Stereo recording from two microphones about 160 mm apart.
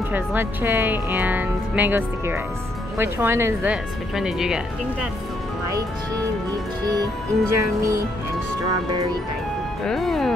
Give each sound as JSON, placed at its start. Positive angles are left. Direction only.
{"t": 0.1, "sound": "speech", "side_deg": -10}
{"t": 3.7, "sound": "speech", "side_deg": -5}
{"t": 6.9, "sound": "music", "side_deg": -20}
{"t": 9.8, "sound": "speech", "side_deg": 0}